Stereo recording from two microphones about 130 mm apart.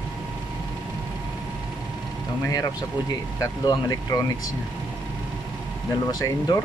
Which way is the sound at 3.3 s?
25° left (ahead or behind).